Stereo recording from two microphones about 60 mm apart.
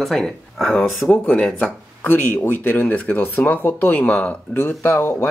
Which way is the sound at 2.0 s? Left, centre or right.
Left.